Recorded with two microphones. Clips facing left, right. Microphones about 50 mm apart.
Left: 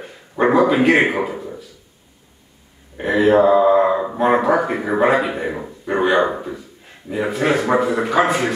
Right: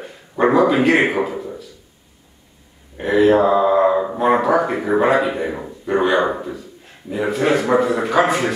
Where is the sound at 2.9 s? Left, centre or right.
Centre.